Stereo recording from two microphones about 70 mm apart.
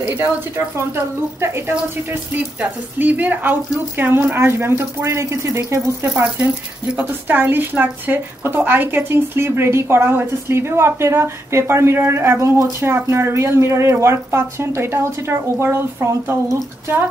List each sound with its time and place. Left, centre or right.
0.7 s a woman's voice: right
2.6 s a woman's voice: right
7.0 s a woman's voice: right